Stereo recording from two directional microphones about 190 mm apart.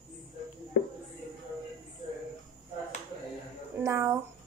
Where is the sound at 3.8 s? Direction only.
15° right (ahead or behind).